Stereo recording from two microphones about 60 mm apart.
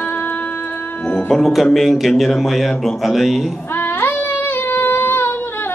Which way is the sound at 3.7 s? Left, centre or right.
Left.